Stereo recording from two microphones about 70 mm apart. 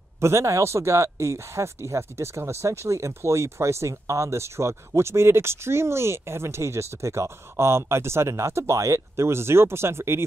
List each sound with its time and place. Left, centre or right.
0.2 s speech: right